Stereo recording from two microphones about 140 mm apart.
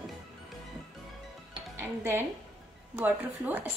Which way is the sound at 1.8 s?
15° right (ahead or behind).